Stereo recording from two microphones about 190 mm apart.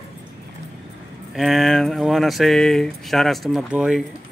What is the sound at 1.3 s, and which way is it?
Speech, centre (ahead or behind).